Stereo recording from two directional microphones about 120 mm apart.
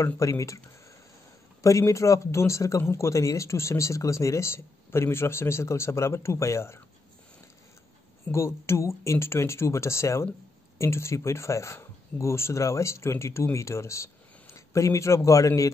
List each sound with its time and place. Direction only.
0.0 s speech: 25° left (ahead or behind)
1.6 s speech: 25° left (ahead or behind)
8.3 s speech: 20° left (ahead or behind)